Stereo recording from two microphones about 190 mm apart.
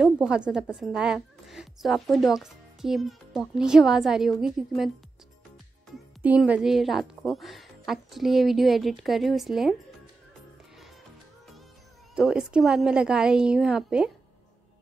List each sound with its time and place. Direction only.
0.0 s a woman's voice: centre (ahead or behind)
6.2 s speech: 5° right (ahead or behind)
12.2 s speech: 5° right (ahead or behind)